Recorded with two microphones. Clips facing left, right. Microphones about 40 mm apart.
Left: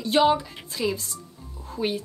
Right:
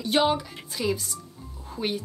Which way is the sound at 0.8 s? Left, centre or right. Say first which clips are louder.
Even; centre.